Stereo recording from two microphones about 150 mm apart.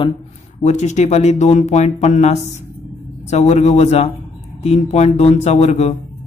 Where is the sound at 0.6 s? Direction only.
50° left (ahead or behind).